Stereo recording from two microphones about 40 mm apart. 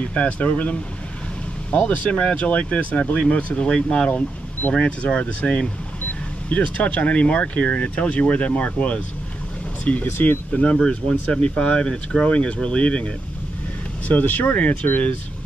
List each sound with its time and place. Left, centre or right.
0.0 s speech: left
1.9 s speech: left
10.0 s speech: left
10.5 s speech: left
14.0 s speech: left